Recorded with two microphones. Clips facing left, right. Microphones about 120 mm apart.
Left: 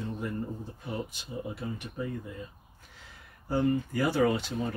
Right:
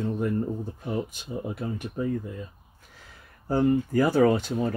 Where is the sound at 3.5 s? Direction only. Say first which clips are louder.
Right 5 dB; 45° right (ahead or behind).